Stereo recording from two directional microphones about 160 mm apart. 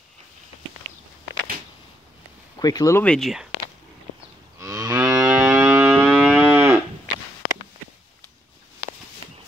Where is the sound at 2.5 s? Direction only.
20° left (ahead or behind).